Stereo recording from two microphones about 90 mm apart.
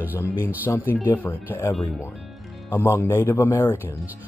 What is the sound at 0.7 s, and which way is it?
Speech, 25° left (ahead or behind).